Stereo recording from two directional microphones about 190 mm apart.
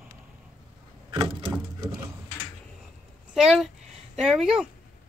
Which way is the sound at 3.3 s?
Centre (ahead or behind).